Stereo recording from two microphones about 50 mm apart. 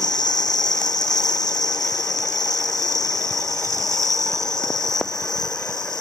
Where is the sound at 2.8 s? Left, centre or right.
Right.